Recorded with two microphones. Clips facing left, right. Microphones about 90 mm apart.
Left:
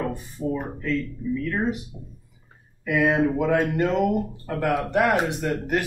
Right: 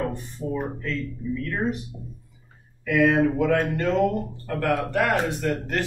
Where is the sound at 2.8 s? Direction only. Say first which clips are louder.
Right 1 dB; 15° left (ahead or behind).